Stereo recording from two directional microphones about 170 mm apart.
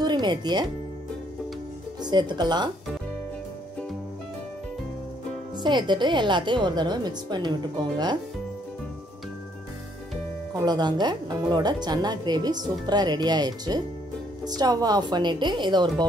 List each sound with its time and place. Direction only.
0.0 s speech: 25° right (ahead or behind)
2.0 s speech: 25° right (ahead or behind)
5.6 s speech: 25° right (ahead or behind)
10.6 s speech: 25° right (ahead or behind)